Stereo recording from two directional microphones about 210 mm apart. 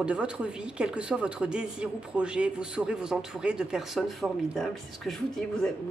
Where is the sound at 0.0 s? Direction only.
5° right (ahead or behind).